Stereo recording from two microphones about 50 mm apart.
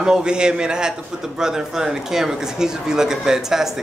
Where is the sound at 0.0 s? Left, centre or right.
Centre.